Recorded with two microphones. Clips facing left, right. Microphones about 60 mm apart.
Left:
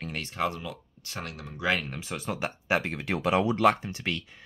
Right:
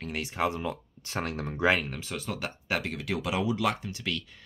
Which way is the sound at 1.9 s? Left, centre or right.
Left.